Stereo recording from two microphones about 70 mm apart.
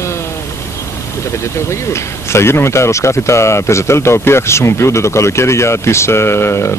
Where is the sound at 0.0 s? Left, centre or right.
Left.